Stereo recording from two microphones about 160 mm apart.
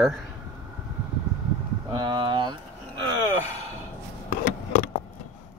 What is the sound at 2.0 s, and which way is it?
Speech, 30° right (ahead or behind).